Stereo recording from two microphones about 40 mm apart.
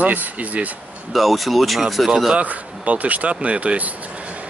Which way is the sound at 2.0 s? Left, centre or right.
Centre.